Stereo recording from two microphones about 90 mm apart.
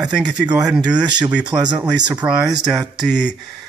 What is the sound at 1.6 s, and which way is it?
Speech, 50° right (ahead or behind).